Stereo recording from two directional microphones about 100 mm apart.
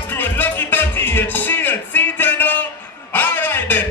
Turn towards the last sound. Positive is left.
turn(degrees=20)  # may be behind; listen again after turning